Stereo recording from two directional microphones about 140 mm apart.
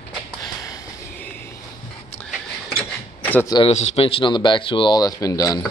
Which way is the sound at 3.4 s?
30° left (ahead or behind).